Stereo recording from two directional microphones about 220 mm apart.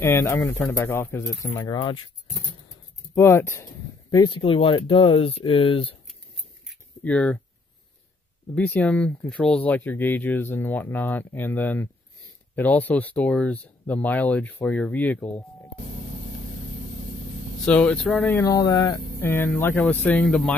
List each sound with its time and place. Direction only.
0.0 s speech: 10° left (ahead or behind)
3.2 s speech: 10° left (ahead or behind)
6.7 s a sound: 5° left (ahead or behind)
8.5 s speech: 5° left (ahead or behind)
17.6 s speech: 5° left (ahead or behind)